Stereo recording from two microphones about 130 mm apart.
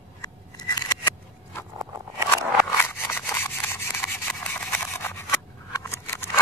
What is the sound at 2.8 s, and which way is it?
Rub, 20° left (ahead or behind).